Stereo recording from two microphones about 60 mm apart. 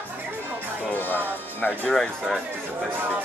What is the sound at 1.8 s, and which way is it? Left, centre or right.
Speech, centre.